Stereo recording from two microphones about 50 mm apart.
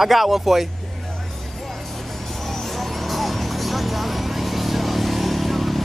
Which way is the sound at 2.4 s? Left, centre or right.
Centre.